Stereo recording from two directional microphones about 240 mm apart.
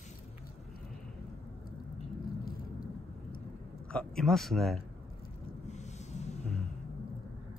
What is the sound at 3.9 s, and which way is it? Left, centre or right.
Speech, centre.